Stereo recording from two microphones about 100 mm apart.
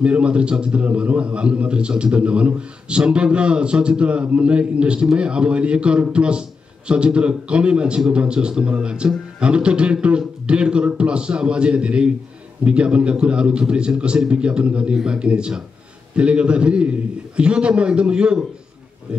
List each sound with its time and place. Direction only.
0.0 s a man's voice: 10° right (ahead or behind)